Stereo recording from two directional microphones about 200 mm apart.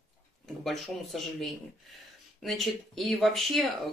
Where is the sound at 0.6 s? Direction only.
Centre (ahead or behind).